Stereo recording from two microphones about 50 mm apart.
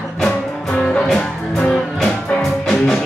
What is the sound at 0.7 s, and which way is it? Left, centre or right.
Music, centre.